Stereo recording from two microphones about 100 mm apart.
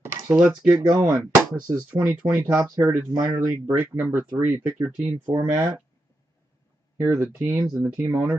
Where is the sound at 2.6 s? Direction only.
35° right (ahead or behind).